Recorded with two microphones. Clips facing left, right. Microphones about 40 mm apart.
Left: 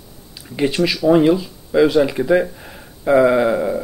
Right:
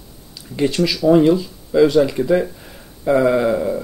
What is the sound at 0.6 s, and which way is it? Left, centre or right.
Speech, centre.